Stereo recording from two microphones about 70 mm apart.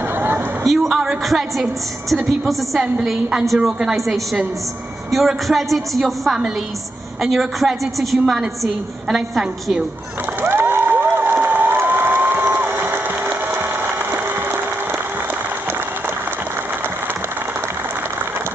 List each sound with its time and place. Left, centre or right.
0.7 s a woman's voice: centre
10.4 s cheering: right